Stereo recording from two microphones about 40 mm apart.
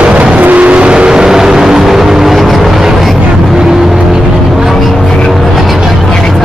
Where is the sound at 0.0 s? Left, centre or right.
Right; by 4.2 s centre.